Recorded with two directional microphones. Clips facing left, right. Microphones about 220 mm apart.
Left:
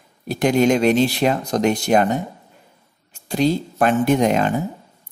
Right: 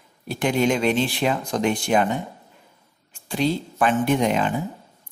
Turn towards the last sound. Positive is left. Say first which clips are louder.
# left 4 dB
turn(degrees=45)  # may be behind; listen again after turning